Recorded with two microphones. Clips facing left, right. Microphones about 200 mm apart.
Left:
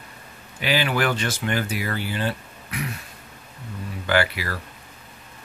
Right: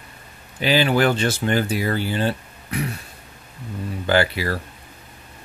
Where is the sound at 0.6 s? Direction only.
30° right (ahead or behind).